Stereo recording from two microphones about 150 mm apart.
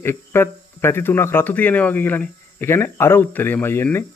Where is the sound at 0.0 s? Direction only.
15° left (ahead or behind).